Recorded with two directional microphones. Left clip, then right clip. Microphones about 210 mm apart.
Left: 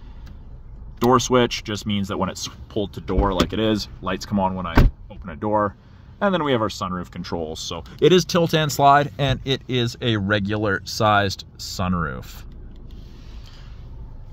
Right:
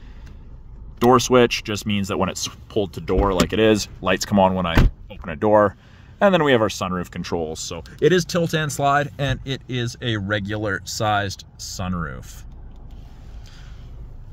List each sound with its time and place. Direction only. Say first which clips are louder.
0.9 s speech: right 2 dB; 20° right (ahead or behind)
8.0 s speech: left 2 dB; 10° left (ahead or behind)